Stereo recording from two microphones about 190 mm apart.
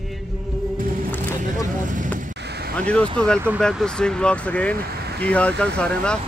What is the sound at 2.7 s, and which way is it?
Speech, 5° left (ahead or behind).